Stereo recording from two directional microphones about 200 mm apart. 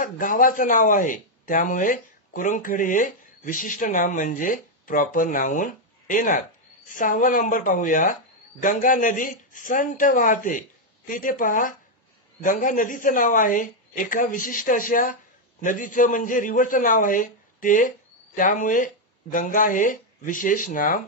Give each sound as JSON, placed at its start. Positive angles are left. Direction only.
{"t": 0.0, "sound": "a man's voice", "side_deg": 40}